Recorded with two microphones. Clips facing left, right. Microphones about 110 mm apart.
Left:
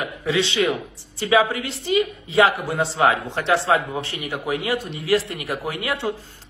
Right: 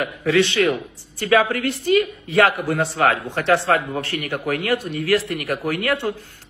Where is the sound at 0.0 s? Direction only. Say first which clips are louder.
Right 4 dB; 15° left (ahead or behind).